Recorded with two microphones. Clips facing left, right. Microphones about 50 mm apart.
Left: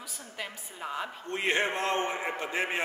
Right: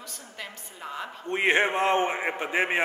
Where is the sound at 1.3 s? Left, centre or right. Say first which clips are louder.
Right 6 dB; right.